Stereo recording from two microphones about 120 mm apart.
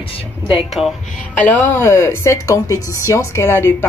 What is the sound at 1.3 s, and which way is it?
A woman's voice, 15° left (ahead or behind).